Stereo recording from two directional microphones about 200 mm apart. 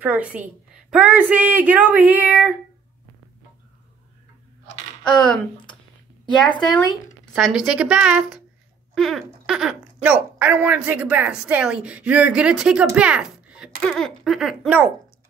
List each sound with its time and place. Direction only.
0.0 s a woman's voice: 5° right (ahead or behind)
5.0 s speech: 5° left (ahead or behind)
6.4 s speech: 20° left (ahead or behind)
7.3 s speech: centre (ahead or behind)